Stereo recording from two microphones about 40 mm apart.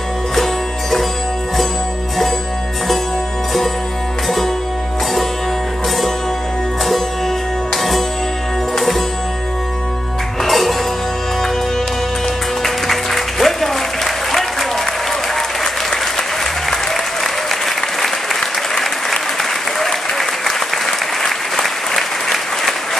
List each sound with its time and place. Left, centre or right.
0.4 s music: centre
7.7 s music: centre
10.4 s music: centre
12.6 s music: centre
16.7 s applause: centre